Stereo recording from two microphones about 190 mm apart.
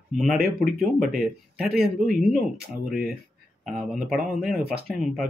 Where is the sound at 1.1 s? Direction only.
50° right (ahead or behind).